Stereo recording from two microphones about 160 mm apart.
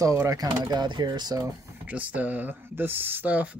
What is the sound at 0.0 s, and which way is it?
Speech, 20° right (ahead or behind).